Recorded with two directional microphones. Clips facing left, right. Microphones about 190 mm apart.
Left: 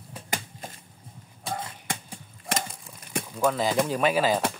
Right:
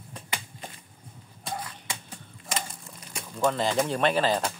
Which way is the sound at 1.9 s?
50° left (ahead or behind).